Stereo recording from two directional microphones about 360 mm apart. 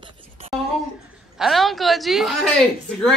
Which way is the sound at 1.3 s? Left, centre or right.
Centre.